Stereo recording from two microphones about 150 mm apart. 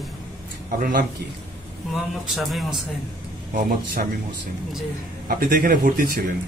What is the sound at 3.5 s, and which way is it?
Speech, 70° right (ahead or behind).